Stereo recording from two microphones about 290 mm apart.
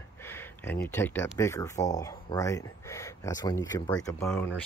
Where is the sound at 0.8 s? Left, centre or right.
Centre.